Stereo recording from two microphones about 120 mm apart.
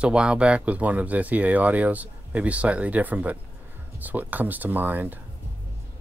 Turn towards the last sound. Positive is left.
turn(degrees=-15)  # may be behind; listen again after turning